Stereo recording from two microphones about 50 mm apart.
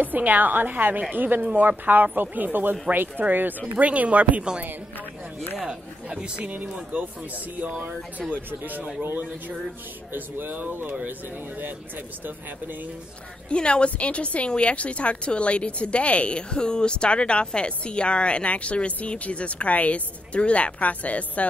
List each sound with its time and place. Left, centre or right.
0.0 s a woman's voice: right
3.7 s speech: right
5.6 s a woman's voice: centre; by 8.8 s right
10.1 s a woman's voice: right
13.5 s a woman's voice: left